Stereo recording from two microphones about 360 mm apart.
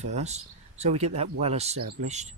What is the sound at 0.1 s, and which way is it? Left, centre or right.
Speech, centre.